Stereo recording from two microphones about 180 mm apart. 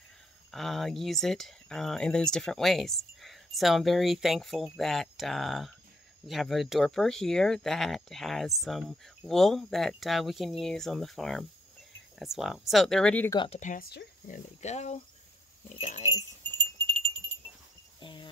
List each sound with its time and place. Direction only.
0.5 s speech: centre (ahead or behind)
13.6 s speech: 50° left (ahead or behind)
14.2 s speech: 40° left (ahead or behind)
16.5 s wind chime: 25° right (ahead or behind)
18.0 s cricket: 25° left (ahead or behind)